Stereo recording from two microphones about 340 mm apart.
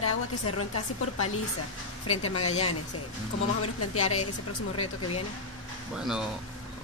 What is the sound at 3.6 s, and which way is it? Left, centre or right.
Speech, left.